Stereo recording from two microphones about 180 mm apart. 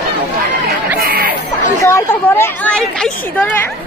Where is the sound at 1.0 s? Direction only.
55° right (ahead or behind).